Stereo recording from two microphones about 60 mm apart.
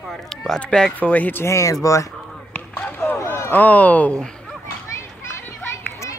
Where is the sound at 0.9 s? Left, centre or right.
Left.